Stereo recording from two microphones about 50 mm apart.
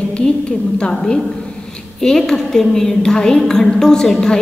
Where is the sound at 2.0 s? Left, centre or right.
Centre.